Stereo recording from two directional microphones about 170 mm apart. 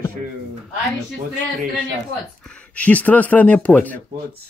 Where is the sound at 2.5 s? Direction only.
10° left (ahead or behind).